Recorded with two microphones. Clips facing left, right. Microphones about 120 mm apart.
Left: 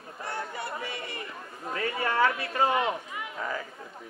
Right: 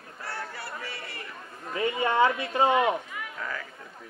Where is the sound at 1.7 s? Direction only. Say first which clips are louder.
Right 3 dB; 20° right (ahead or behind).